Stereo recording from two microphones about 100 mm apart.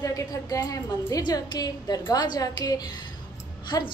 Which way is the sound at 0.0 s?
35° left (ahead or behind).